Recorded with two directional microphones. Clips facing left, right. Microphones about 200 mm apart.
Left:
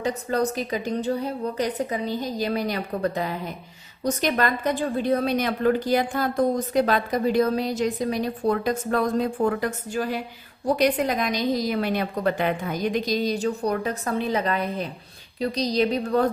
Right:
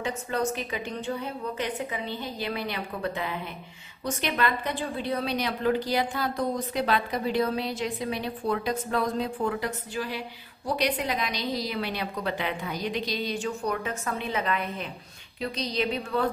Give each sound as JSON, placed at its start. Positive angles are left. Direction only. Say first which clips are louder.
{"t": 0.0, "sound": "a woman's voice", "louder": "left 5 dB", "side_deg": 35}